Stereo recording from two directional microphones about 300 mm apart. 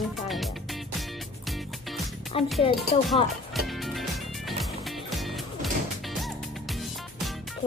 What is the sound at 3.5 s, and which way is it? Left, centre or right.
Music, centre.